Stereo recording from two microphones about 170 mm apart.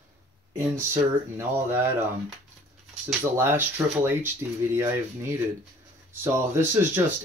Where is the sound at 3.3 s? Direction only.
15° right (ahead or behind).